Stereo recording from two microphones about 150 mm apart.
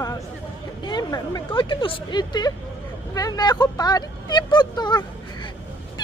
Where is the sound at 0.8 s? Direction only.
30° left (ahead or behind).